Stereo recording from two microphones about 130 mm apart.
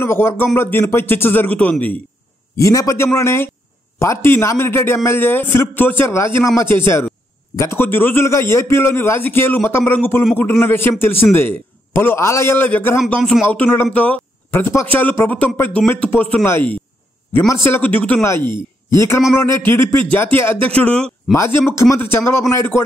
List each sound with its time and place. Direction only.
0.0 s a man's voice: 20° left (ahead or behind)
2.5 s a man's voice: 25° left (ahead or behind); by 21.1 s 10° left (ahead or behind)
21.3 s a man's voice: 20° left (ahead or behind)